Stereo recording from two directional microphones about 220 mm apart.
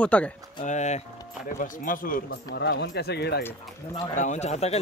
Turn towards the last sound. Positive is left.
turn(degrees=30)  # may be behind; listen again after turning